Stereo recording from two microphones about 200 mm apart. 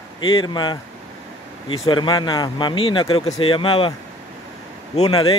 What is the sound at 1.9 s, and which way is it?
Speech, 25° left (ahead or behind).